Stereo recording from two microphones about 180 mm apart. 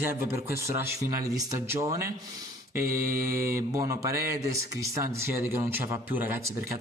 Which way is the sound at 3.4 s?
15° right (ahead or behind).